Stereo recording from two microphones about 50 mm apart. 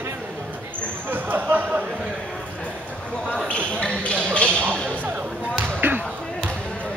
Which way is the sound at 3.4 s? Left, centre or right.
Left.